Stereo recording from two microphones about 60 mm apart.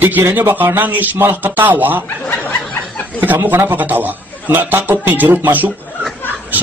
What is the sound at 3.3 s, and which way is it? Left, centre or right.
Speech, right.